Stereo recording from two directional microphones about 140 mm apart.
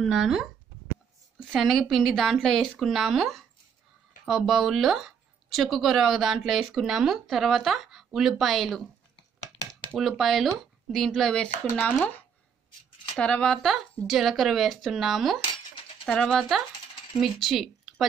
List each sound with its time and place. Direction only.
0.0 s a woman's voice: centre (ahead or behind)
13.1 s a woman's voice: 5° left (ahead or behind)